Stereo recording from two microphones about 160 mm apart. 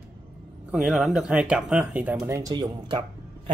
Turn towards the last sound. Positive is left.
turn(degrees=-30)  # may be behind; listen again after turning